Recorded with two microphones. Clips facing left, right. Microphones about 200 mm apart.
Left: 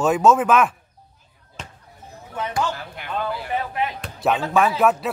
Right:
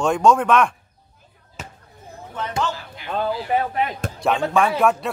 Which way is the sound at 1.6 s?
5° right (ahead or behind).